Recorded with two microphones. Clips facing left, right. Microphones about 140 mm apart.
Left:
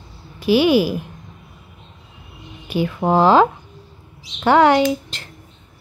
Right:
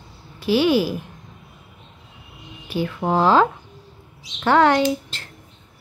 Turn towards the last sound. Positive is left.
turn(degrees=15)  # may be behind; listen again after turning